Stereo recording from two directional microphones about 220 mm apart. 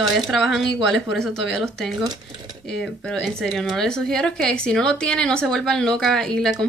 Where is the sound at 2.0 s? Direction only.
20° right (ahead or behind).